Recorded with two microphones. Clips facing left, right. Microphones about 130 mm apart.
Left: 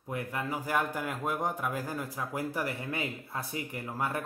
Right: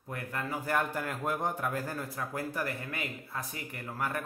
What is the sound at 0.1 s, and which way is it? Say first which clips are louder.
A man's voice: left 2 dB; 15° left (ahead or behind).